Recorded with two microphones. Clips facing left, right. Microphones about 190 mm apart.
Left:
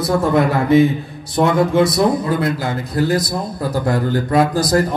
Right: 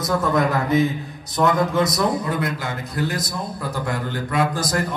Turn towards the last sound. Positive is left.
turn(degrees=35)  # may be behind; listen again after turning